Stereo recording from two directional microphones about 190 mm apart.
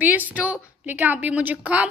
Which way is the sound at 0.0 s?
10° right (ahead or behind).